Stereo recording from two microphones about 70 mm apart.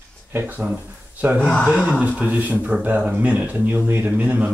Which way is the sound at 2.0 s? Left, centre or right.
Centre.